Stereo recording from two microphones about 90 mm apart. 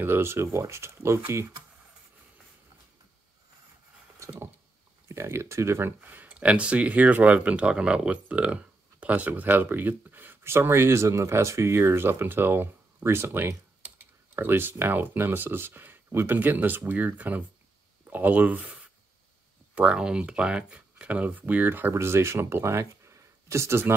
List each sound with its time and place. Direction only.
0.0 s speech: 25° right (ahead or behind)
5.0 s speech: 30° right (ahead or behind)
5.9 s speech: 20° right (ahead or behind)